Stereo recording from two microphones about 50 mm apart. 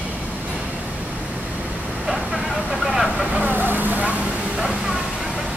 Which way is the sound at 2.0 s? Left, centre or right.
Centre.